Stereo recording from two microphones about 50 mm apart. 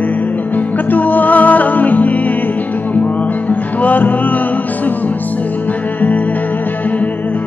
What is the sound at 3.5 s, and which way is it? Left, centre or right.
Music, left.